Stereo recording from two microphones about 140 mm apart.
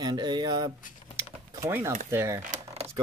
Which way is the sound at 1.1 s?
20° right (ahead or behind).